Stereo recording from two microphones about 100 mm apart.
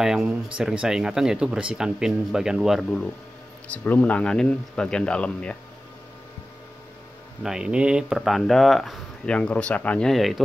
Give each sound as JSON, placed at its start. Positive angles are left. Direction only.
{"t": 0.0, "sound": "speech", "side_deg": -5}
{"t": 3.6, "sound": "speech", "side_deg": 15}
{"t": 7.4, "sound": "speech", "side_deg": -5}
{"t": 9.2, "sound": "speech", "side_deg": 10}